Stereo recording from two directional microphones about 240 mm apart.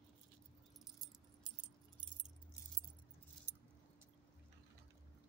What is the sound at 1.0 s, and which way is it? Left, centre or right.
Keys jangling, centre.